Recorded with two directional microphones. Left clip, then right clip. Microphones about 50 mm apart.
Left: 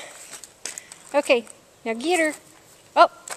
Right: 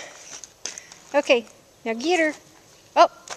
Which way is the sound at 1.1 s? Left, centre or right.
Right.